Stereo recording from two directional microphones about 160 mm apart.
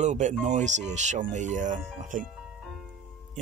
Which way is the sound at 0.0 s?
45° right (ahead or behind).